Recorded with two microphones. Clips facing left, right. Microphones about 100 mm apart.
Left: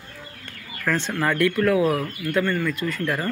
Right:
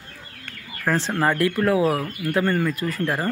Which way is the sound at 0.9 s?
30° right (ahead or behind).